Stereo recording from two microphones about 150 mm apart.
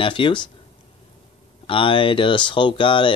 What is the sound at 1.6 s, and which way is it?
Speech, 35° left (ahead or behind).